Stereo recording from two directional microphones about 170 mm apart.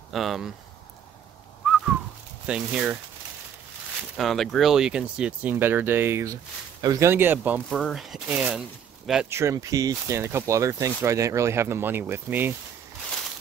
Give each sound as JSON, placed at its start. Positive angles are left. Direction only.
{"t": 0.1, "sound": "speech", "side_deg": 0}
{"t": 2.4, "sound": "speech", "side_deg": -5}
{"t": 4.2, "sound": "speech", "side_deg": 0}
{"t": 7.7, "sound": "speech", "side_deg": 0}
{"t": 9.3, "sound": "speech", "side_deg": -15}